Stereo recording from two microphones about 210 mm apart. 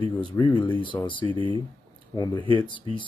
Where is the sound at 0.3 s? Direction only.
15° left (ahead or behind).